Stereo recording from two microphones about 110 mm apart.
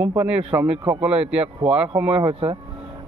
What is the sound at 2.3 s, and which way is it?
Speech, 55° right (ahead or behind).